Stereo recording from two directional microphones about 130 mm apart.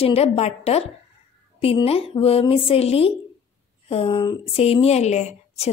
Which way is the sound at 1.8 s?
45° left (ahead or behind).